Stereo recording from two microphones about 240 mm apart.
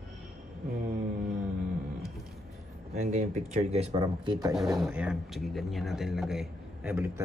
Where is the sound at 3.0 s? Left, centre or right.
Right.